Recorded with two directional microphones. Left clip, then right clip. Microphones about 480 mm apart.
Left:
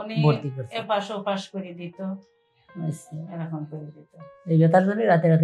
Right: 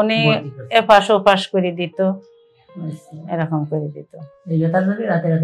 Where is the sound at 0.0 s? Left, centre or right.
Right.